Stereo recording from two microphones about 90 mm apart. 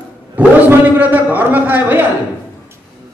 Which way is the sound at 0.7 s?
20° right (ahead or behind).